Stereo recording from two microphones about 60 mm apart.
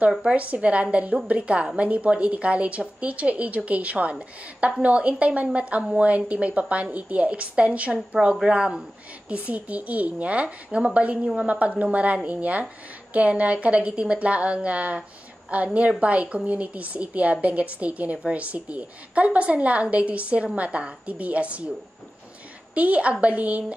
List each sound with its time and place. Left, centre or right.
0.2 s a woman's voice: right
9.5 s a woman's voice: right
22.8 s a woman's voice: right